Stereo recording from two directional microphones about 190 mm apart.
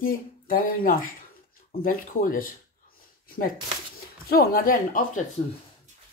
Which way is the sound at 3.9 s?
55° left (ahead or behind).